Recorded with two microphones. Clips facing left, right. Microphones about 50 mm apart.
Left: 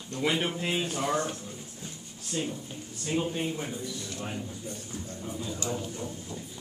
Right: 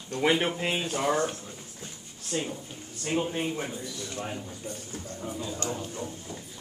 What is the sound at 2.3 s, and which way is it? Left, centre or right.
Speech, right.